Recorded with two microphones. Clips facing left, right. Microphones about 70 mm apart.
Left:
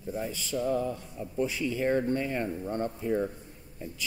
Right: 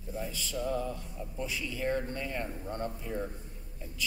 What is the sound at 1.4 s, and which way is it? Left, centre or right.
A man's voice, left.